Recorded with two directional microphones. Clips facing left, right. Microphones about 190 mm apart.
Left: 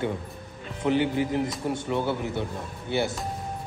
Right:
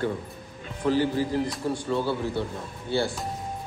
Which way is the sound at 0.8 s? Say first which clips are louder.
Even; 20° left (ahead or behind).